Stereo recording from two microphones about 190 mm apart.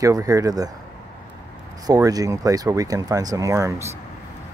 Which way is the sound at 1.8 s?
20° right (ahead or behind).